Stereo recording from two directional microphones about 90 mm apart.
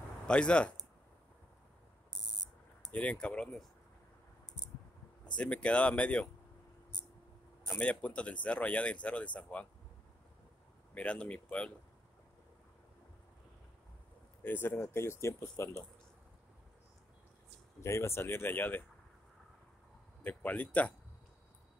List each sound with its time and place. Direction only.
0.3 s speech: 10° left (ahead or behind)
2.9 s speech: 15° left (ahead or behind)
5.2 s speech: 15° left (ahead or behind)
7.6 s speech: 10° left (ahead or behind)
11.0 s speech: 15° left (ahead or behind)
14.4 s speech: 25° left (ahead or behind)
17.8 s speech: 30° left (ahead or behind)
20.2 s speech: 20° left (ahead or behind)